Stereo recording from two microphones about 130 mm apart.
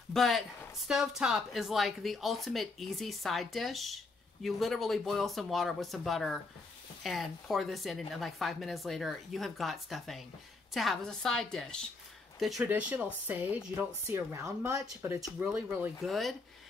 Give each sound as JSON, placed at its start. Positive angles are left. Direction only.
{"t": 0.1, "sound": "speech", "side_deg": 0}
{"t": 12.6, "sound": "speech", "side_deg": -10}
{"t": 15.1, "sound": "speech", "side_deg": 0}
{"t": 15.4, "sound": "speech", "side_deg": -15}
{"t": 16.0, "sound": "speech", "side_deg": 0}